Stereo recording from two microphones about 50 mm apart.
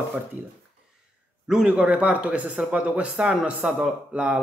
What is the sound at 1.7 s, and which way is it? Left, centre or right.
Speech, right.